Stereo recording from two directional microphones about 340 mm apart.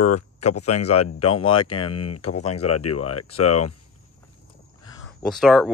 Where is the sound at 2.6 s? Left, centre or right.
Left.